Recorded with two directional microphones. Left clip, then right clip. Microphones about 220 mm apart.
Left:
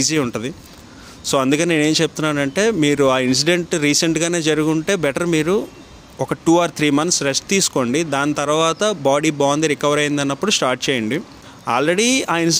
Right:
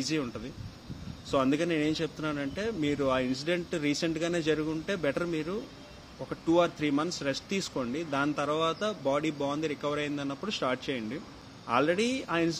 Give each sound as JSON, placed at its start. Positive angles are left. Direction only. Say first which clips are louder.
{"t": 0.0, "sound": "speech", "louder": "left 14 dB", "side_deg": 55}